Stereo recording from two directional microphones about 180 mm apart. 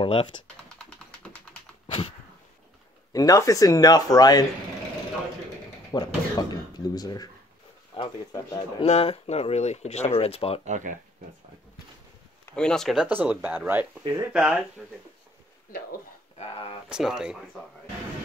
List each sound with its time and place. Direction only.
0.0 s speech: 30° left (ahead or behind)
0.6 s typing: 5° left (ahead or behind)
3.1 s speech: 20° left (ahead or behind)
5.9 s speech: 25° left (ahead or behind)
10.6 s speech: 45° right (ahead or behind)
12.5 s speech: 5° left (ahead or behind); by 14.3 s 15° right (ahead or behind)
14.3 s speech: 5° right (ahead or behind)
16.3 s speech: 30° left (ahead or behind)
16.9 s speech: 5° right (ahead or behind)